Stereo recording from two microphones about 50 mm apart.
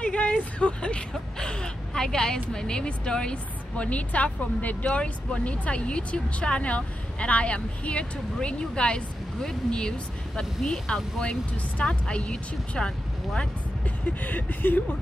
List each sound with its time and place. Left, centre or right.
0.0 s speech: left
13.8 s speech: left